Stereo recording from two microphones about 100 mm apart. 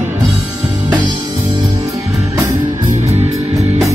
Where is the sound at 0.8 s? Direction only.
50° right (ahead or behind).